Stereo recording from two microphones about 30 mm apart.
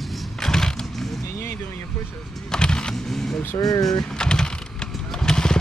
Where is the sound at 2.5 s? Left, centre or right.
Left.